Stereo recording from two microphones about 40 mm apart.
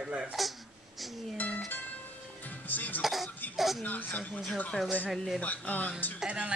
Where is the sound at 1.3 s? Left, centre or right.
Left.